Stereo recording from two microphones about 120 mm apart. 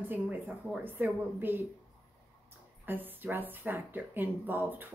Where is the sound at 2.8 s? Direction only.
15° right (ahead or behind).